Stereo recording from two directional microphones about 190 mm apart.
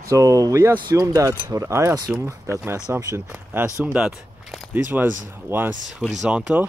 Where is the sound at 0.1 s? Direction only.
20° right (ahead or behind); by 4.8 s centre (ahead or behind).